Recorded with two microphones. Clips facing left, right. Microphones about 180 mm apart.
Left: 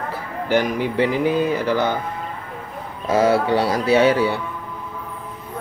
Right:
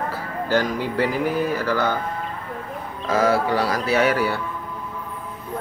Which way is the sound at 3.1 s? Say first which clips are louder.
Left 3 dB; 25° left (ahead or behind).